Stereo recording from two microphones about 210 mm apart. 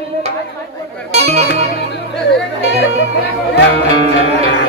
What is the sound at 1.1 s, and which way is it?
Music, 30° right (ahead or behind).